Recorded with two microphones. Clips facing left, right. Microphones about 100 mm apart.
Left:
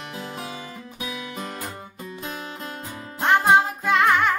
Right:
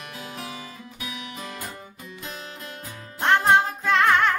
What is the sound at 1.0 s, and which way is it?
Music, 35° left (ahead or behind).